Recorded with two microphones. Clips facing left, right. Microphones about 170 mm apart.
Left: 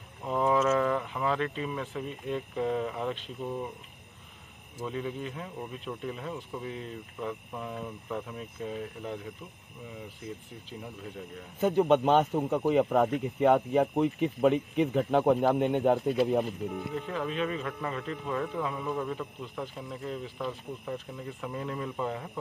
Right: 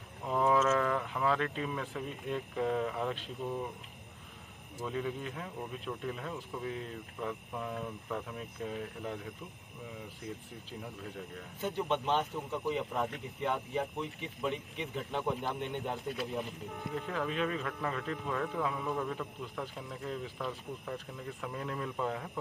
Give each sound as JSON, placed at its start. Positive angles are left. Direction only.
{"t": 0.3, "sound": "a sound", "side_deg": 0}
{"t": 0.6, "sound": "speech", "side_deg": 5}
{"t": 4.8, "sound": "speech", "side_deg": 0}
{"t": 10.8, "sound": "speech", "side_deg": 5}
{"t": 11.6, "sound": "speech", "side_deg": 55}
{"t": 16.9, "sound": "speech", "side_deg": 0}